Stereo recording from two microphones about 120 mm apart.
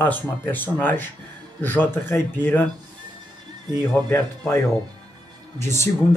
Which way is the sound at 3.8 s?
15° left (ahead or behind).